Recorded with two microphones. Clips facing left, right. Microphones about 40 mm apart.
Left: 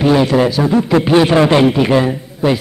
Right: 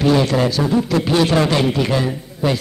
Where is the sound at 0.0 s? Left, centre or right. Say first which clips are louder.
Left 4 dB; centre.